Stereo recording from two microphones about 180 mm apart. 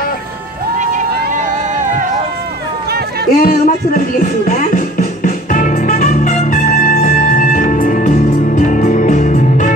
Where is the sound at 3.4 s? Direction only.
50° left (ahead or behind).